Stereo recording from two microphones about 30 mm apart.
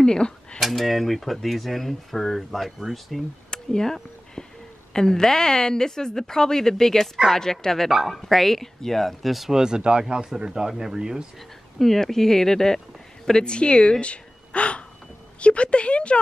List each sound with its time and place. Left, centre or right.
0.0 s speech: left
0.6 s speech: centre
3.4 s a sound: left
4.9 s speech: centre
7.9 s speech: centre
8.3 s speech: centre
9.5 s speech: right
11.8 s speech: centre
13.4 s a woman's voice: left